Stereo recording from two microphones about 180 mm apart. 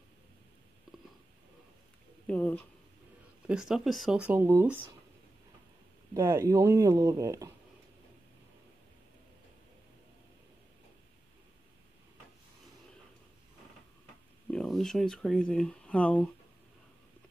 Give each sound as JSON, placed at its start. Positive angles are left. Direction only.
{"t": 2.2, "sound": "speech", "side_deg": 10}
{"t": 3.4, "sound": "speech", "side_deg": -5}
{"t": 6.1, "sound": "speech", "side_deg": -15}
{"t": 14.5, "sound": "speech", "side_deg": 5}